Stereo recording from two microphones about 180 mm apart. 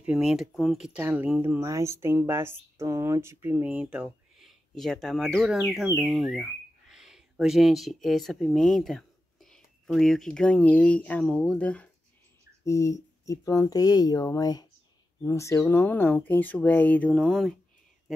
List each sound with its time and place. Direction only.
0.0 s speech: 5° right (ahead or behind)
12.6 s speech: 15° left (ahead or behind); by 17.6 s centre (ahead or behind)